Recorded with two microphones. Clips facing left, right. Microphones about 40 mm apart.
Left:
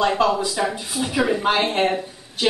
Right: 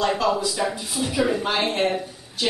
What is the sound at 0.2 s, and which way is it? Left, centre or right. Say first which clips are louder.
Speech: left 4 dB; left.